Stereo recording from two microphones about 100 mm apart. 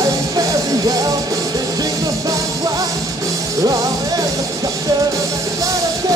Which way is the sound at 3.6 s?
35° right (ahead or behind).